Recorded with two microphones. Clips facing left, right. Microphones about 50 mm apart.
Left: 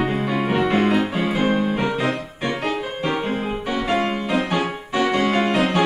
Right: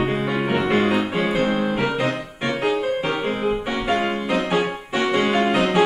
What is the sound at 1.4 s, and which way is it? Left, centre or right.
Music, right.